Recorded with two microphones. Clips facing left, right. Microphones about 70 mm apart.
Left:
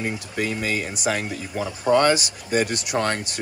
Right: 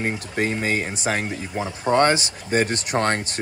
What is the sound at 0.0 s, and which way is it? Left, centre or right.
Speech, right.